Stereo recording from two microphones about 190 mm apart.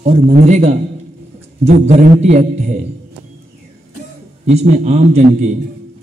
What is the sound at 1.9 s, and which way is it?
Speech, 35° right (ahead or behind).